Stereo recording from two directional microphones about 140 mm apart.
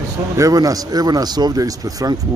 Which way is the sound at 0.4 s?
25° right (ahead or behind).